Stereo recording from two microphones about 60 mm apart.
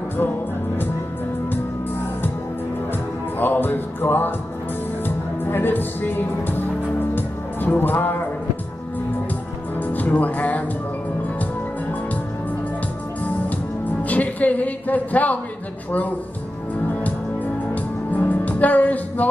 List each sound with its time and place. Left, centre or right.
2.9 s music: left
9.8 s music: left
14.0 s speech: left
17.0 s music: left